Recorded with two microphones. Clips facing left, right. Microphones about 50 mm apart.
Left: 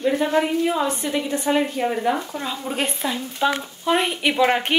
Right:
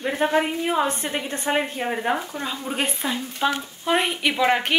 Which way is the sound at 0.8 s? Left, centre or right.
Right.